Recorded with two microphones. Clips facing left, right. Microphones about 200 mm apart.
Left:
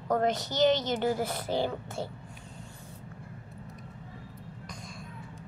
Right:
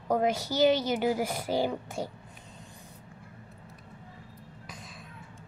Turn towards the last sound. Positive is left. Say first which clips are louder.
# left 3 dB
turn(degrees=-5)  # may be behind; listen again after turning